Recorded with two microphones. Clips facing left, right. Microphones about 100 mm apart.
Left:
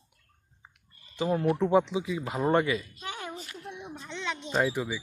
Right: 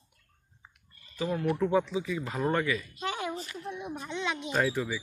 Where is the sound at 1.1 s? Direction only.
30° left (ahead or behind).